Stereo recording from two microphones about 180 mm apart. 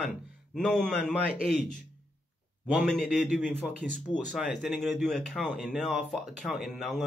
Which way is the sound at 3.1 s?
5° left (ahead or behind).